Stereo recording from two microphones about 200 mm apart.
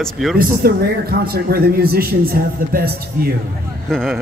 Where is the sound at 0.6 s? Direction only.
50° right (ahead or behind).